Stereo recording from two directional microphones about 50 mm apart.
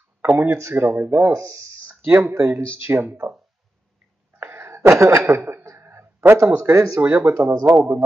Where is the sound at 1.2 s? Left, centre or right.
Right.